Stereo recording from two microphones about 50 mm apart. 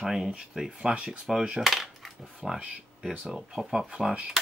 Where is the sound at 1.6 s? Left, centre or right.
Centre.